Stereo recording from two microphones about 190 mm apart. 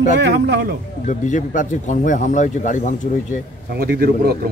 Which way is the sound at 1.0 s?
40° left (ahead or behind).